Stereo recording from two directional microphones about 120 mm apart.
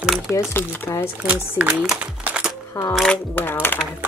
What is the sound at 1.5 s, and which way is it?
Music, 10° right (ahead or behind).